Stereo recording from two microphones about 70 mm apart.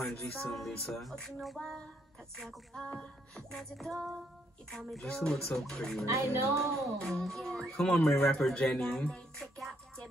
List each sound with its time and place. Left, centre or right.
0.1 s music: centre
2.8 s a sound: centre
3.4 s music: centre
5.1 s music: centre
6.0 s music: right
7.0 s music: centre